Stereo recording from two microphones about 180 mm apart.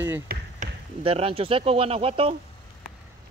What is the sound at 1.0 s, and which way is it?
Speech, 30° right (ahead or behind).